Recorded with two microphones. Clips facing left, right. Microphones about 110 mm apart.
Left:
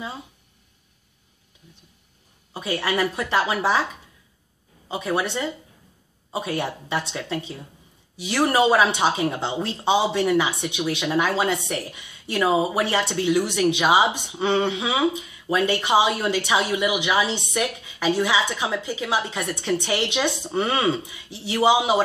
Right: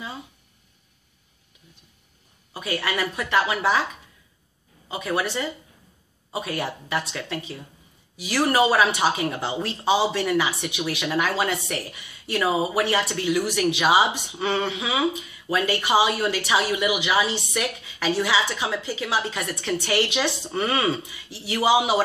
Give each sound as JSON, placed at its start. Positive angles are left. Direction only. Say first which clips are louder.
{"t": 2.5, "sound": "speech", "louder": "left 3 dB", "side_deg": 25}